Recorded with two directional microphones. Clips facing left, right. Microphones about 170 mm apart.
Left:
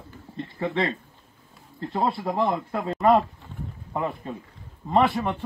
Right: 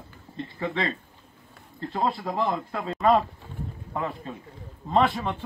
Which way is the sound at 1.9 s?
20° left (ahead or behind).